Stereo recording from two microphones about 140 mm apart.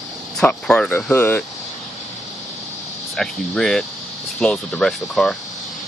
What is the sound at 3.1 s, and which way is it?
Speech, 5° left (ahead or behind).